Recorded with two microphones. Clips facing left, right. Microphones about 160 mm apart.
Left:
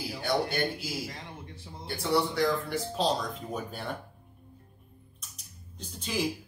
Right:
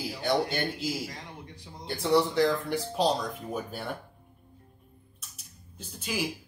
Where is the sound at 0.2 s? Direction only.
20° right (ahead or behind).